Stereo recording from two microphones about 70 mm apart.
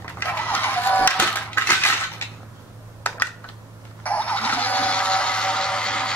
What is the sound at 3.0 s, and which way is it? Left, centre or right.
Computer keyboard, left.